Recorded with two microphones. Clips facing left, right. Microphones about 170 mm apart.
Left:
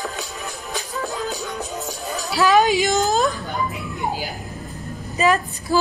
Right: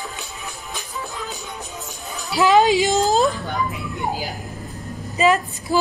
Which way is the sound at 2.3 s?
20° right (ahead or behind).